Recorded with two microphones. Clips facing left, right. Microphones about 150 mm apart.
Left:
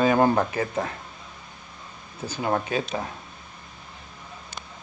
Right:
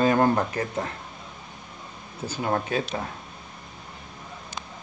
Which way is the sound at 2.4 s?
5° left (ahead or behind).